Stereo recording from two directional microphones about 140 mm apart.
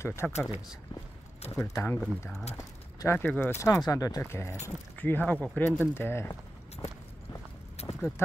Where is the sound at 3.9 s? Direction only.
25° left (ahead or behind).